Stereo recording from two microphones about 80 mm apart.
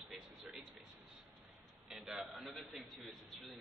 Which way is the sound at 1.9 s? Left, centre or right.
Centre.